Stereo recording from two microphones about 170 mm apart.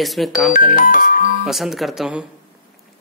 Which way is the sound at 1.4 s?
Centre (ahead or behind).